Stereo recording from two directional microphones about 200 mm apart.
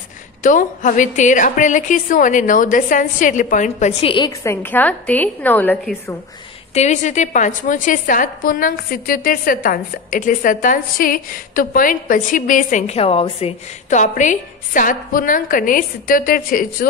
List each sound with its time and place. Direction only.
0.4 s a woman's voice: 40° left (ahead or behind); by 6.1 s 10° left (ahead or behind)
6.7 s a woman's voice: 35° left (ahead or behind)